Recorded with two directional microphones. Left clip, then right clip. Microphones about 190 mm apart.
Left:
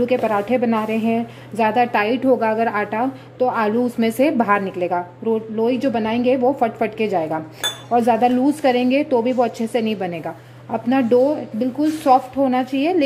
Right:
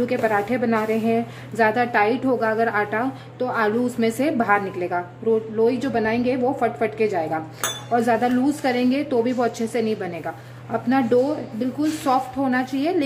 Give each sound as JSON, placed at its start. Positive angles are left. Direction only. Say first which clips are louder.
{"t": 0.1, "sound": "a woman's voice", "louder": "left 3 dB", "side_deg": 25}